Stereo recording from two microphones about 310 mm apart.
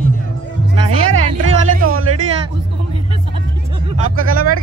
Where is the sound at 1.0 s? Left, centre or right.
Right.